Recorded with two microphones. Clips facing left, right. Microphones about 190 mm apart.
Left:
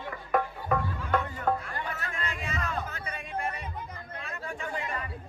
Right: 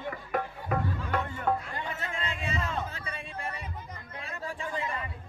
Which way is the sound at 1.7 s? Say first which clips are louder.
Even; 20° right (ahead or behind).